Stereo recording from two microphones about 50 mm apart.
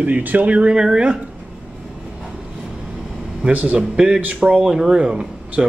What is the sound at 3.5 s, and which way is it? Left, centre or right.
Speech, right.